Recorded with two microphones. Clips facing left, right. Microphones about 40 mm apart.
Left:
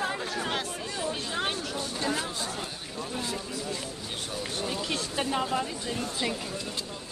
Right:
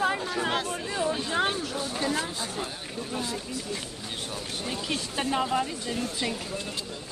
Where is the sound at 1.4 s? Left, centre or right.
Centre.